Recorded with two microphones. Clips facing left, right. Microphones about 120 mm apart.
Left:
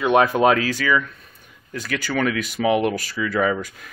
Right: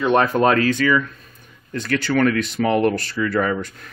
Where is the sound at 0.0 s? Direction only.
5° left (ahead or behind).